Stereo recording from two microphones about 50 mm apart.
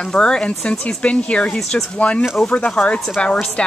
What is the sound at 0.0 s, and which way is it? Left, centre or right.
Speech, centre.